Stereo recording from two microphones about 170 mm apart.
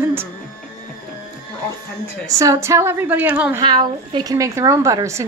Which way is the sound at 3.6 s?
25° right (ahead or behind).